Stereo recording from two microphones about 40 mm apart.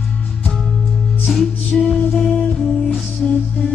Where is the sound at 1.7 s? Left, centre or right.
Centre.